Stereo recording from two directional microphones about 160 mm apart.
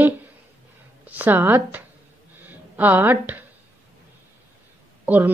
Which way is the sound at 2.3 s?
10° right (ahead or behind).